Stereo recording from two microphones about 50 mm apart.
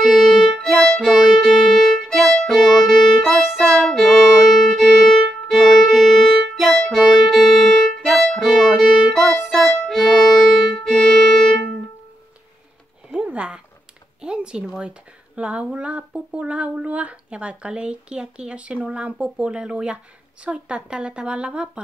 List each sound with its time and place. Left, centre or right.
0.0 s violin: centre
0.6 s violin: centre
2.0 s violin: centre
3.3 s music: centre
3.9 s violin: centre
9.8 s violin: centre
10.9 s violin: centre
13.1 s a sound: right
20.4 s speech: right